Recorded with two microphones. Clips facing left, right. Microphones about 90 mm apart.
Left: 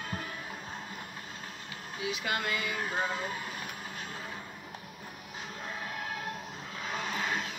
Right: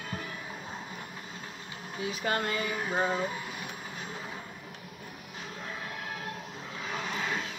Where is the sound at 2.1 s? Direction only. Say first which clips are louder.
Right 2 dB; 35° right (ahead or behind).